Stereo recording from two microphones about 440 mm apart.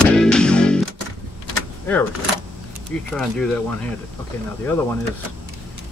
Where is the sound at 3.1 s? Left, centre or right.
Centre.